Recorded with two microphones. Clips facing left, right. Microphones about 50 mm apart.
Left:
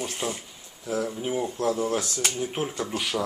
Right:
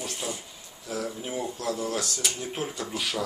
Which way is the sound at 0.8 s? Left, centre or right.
Left.